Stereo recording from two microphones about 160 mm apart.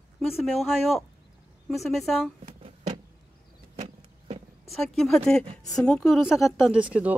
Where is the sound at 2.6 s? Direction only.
35° right (ahead or behind).